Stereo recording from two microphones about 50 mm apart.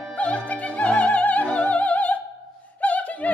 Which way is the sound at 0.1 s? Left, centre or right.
Left.